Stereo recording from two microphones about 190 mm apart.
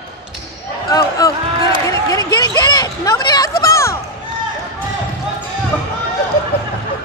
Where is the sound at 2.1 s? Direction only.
20° left (ahead or behind).